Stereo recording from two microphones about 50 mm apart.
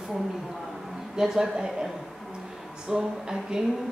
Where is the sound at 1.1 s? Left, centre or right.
Centre.